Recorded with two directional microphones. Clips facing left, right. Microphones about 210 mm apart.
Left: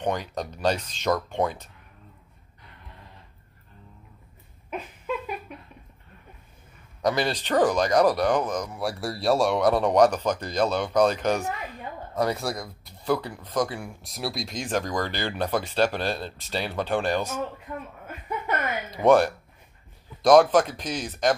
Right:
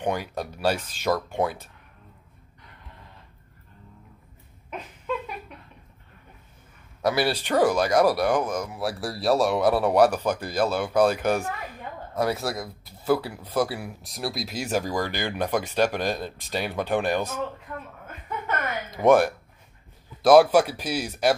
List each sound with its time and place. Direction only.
0.0 s speech: 10° right (ahead or behind)
7.0 s speech: 5° right (ahead or behind)
18.5 s a sound: 15° left (ahead or behind)
18.9 s speech: 15° right (ahead or behind)